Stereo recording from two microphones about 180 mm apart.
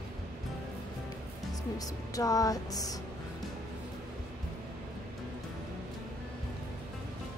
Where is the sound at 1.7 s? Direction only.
20° left (ahead or behind).